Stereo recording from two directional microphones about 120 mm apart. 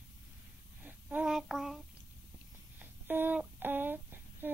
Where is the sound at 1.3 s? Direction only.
Centre (ahead or behind).